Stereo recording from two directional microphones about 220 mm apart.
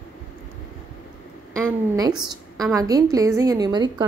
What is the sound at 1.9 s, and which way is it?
A woman's voice, 20° right (ahead or behind).